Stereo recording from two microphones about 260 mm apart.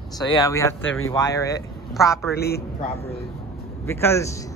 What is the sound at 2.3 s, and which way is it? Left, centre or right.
Speech, left.